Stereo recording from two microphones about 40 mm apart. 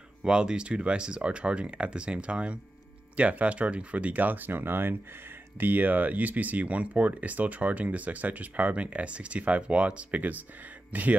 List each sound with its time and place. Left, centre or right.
0.2 s speech: right
5.6 s speech: right